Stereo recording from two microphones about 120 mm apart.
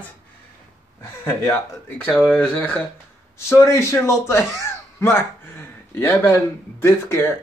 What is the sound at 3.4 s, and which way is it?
Speech, 25° left (ahead or behind).